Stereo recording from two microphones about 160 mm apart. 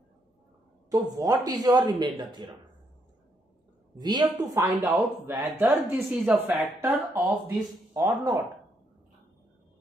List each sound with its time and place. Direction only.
0.8 s speech: 25° right (ahead or behind)
4.0 s speech: 25° right (ahead or behind)